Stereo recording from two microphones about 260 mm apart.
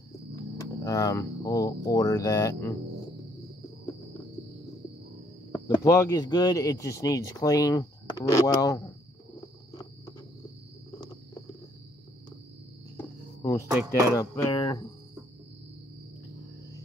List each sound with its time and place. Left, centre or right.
0.4 s speech: centre
5.5 s speech: centre
12.9 s cricket: centre
13.7 s speech: centre
14.1 s speech: centre